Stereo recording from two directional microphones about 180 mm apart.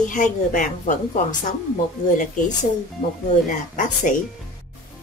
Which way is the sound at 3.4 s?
45° left (ahead or behind).